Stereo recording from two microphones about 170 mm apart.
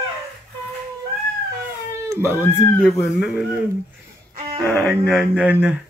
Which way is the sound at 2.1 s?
15° right (ahead or behind).